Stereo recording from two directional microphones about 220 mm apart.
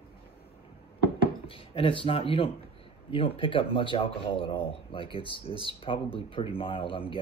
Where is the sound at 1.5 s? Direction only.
25° left (ahead or behind).